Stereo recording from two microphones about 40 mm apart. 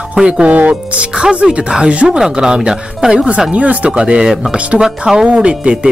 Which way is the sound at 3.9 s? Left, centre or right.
Right.